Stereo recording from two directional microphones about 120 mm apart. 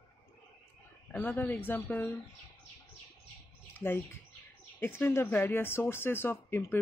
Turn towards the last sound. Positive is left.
turn(degrees=20)  # may be behind; listen again after turning